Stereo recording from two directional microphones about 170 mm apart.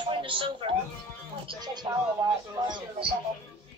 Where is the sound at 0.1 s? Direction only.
30° right (ahead or behind).